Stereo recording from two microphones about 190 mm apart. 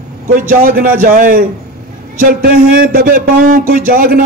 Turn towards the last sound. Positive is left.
turn(degrees=-50)  # may be behind; listen again after turning